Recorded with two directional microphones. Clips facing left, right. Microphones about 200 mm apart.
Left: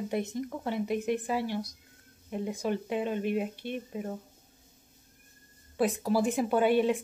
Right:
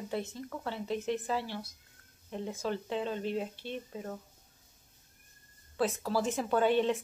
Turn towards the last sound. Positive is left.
turn(degrees=10)  # may be behind; listen again after turning